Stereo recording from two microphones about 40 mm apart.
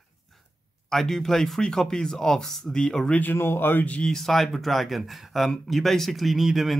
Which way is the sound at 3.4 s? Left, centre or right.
Left.